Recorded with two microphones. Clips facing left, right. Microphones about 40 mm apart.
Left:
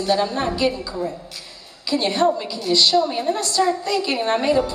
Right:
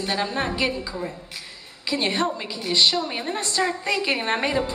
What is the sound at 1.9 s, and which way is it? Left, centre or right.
A woman's voice, centre.